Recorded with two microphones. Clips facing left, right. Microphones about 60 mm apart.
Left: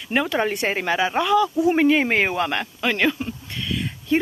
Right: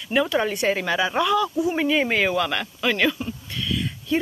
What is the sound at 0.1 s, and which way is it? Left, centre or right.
Speech, left.